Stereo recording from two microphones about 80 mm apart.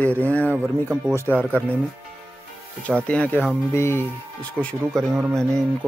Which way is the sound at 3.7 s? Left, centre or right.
Left.